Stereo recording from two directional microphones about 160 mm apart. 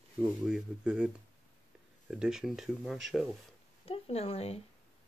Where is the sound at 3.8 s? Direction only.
40° left (ahead or behind).